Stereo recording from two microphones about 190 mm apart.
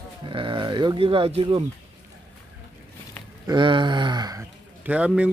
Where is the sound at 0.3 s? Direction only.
25° right (ahead or behind).